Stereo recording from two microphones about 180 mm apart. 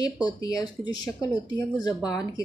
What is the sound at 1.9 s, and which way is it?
Speech, 5° right (ahead or behind).